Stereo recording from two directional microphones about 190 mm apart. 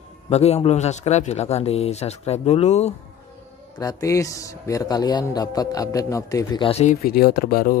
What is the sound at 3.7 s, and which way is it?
Speech, 15° left (ahead or behind).